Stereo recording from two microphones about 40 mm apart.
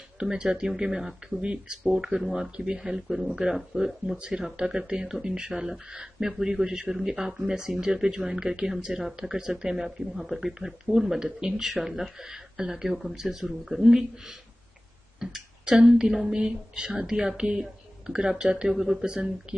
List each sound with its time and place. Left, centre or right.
0.2 s speech: right
2.5 s speech: right
2.9 s speech: centre
15.6 s a woman's voice: right
17.5 s a sound: right
18.4 s speech: right
18.7 s speech: centre